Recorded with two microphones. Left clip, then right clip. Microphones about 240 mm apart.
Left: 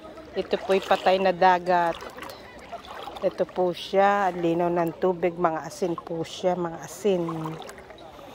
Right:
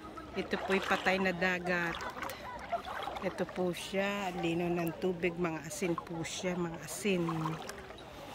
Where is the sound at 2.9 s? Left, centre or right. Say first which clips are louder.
Left 9 dB; left.